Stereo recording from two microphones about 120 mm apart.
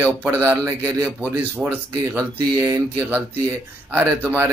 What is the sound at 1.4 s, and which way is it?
Speech, 15° right (ahead or behind).